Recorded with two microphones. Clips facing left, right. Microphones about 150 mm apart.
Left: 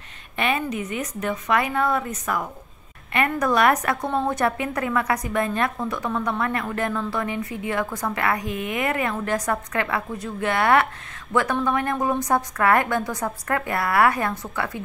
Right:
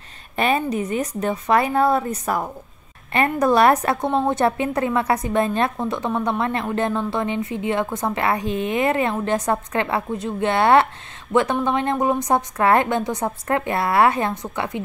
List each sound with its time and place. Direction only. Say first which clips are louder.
0.4 s a woman's voice: right 4 dB; 35° right (ahead or behind)